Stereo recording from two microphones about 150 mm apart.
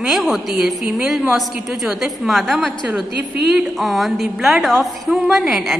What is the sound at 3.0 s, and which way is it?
Speech, 90° right.